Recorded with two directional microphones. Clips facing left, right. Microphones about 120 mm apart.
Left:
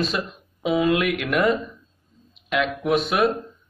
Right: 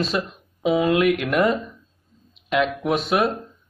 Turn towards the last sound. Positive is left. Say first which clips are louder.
# even
turn(degrees=-30)  # may be behind; listen again after turning